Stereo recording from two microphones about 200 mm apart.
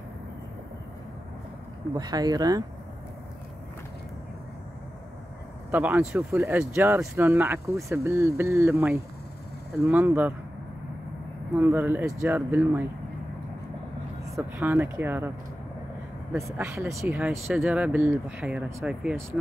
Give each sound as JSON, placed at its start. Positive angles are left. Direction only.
{"t": 2.0, "sound": "speech", "side_deg": -20}
{"t": 5.7, "sound": "speech", "side_deg": -10}
{"t": 11.5, "sound": "speech", "side_deg": -10}
{"t": 14.3, "sound": "speech", "side_deg": -10}
{"t": 16.4, "sound": "speech", "side_deg": -15}